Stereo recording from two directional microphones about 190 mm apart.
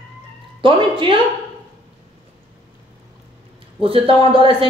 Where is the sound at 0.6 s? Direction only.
25° right (ahead or behind).